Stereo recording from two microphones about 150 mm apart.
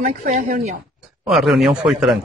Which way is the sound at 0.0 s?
55° right (ahead or behind).